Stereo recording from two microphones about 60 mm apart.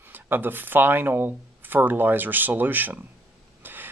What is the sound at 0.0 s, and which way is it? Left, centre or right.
Speech, right.